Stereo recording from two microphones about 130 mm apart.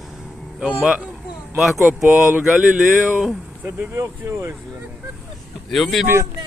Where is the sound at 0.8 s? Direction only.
5° right (ahead or behind).